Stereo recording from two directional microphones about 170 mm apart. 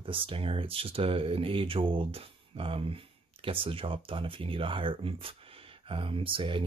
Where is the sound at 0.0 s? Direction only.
30° right (ahead or behind).